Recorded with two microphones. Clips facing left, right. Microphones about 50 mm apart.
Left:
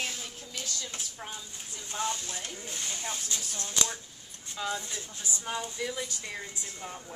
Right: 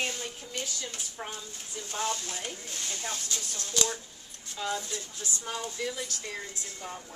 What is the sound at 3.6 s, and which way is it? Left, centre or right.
Speech, left.